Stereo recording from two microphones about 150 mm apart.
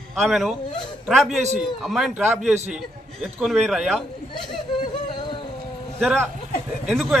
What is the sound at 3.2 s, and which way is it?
Speech, centre (ahead or behind).